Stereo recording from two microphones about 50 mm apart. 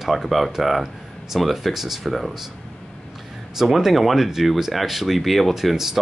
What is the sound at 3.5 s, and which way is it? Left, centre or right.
Speech, centre.